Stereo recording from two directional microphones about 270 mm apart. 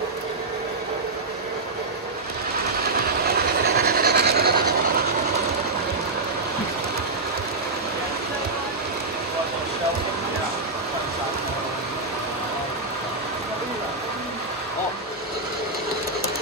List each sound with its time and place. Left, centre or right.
3.3 s train: right